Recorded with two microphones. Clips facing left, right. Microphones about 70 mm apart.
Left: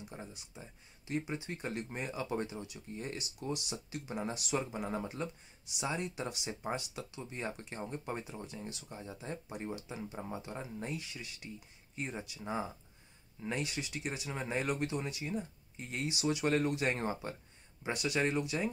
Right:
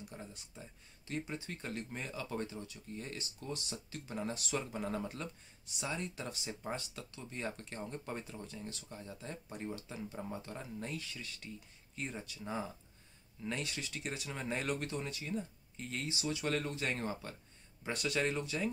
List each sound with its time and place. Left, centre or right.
0.0 s speech: centre
17.8 s speech: centre